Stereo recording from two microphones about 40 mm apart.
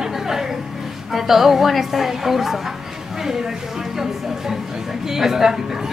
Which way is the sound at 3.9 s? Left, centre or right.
Centre.